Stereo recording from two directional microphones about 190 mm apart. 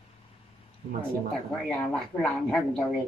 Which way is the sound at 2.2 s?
5° left (ahead or behind).